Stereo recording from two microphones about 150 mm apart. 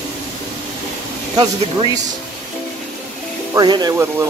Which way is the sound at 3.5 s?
30° right (ahead or behind).